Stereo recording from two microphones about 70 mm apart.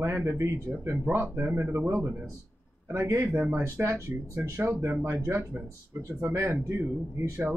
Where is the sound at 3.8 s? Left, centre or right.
Right.